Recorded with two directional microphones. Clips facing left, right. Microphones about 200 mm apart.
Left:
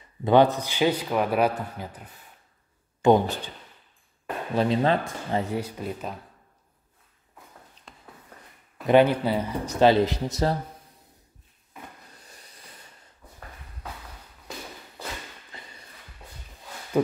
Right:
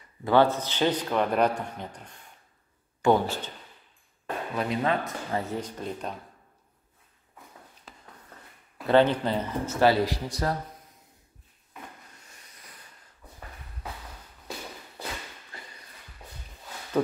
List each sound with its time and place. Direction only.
0.2 s a man's voice: 20° left (ahead or behind)
3.0 s a man's voice: 15° left (ahead or behind)
4.6 s speech: 30° left (ahead or behind)
5.5 s a man's voice: 10° left (ahead or behind)
7.9 s a sound: centre (ahead or behind)
8.8 s speech: 10° left (ahead or behind)
12.2 s rub: 35° left (ahead or behind)
15.5 s a sound: 20° left (ahead or behind)